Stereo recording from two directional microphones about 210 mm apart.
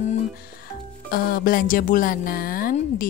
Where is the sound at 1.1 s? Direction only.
45° left (ahead or behind).